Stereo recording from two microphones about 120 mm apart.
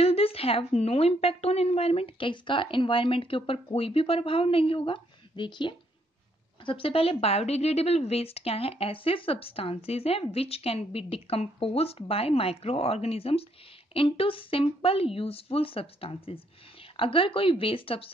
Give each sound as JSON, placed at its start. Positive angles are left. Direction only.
{"t": 0.0, "sound": "a woman's voice", "side_deg": 55}